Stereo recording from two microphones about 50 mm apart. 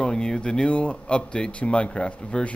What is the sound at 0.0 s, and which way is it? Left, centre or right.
Speech, centre.